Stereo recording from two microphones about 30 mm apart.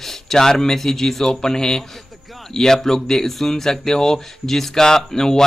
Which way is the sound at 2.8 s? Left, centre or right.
Centre.